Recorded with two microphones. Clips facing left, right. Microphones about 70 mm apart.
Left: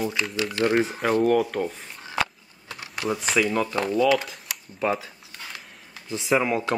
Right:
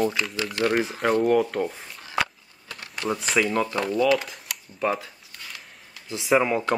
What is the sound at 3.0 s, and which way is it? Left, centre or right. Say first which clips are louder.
Speech: even; centre.